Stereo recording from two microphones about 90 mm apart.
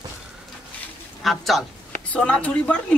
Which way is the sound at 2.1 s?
10° left (ahead or behind).